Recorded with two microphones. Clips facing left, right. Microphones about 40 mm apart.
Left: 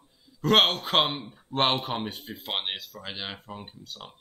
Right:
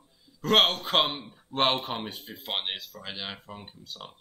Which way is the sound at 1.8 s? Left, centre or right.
Centre.